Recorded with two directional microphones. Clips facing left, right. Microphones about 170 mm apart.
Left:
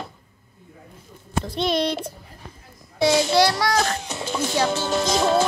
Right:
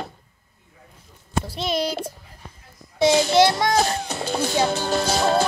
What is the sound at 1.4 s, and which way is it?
Music, 5° right (ahead or behind).